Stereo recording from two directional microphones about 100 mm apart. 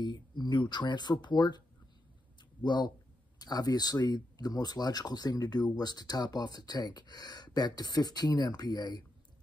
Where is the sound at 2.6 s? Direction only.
45° left (ahead or behind).